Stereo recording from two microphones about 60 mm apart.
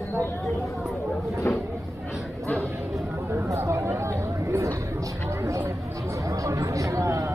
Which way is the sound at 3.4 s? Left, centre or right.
Right.